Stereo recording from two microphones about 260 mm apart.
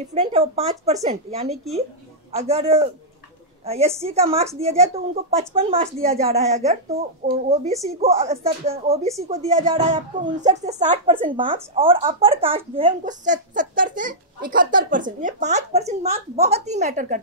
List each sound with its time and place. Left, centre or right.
0.0 s speech: right